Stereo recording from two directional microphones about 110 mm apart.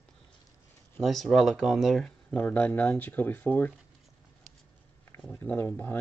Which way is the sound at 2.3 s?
15° left (ahead or behind).